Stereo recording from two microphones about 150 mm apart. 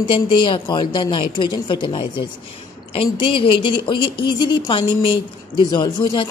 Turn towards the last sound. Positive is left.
turn(degrees=30)  # may be behind; listen again after turning